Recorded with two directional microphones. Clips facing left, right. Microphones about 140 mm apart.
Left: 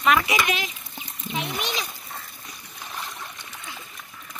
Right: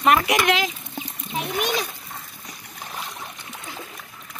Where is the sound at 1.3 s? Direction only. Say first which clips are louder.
Right 4 dB; 50° right (ahead or behind).